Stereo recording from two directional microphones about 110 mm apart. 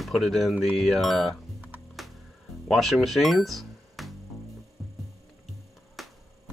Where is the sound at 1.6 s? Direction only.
15° right (ahead or behind).